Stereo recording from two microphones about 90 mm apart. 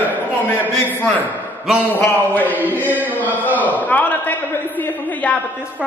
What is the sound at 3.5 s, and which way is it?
A man's voice, 20° left (ahead or behind).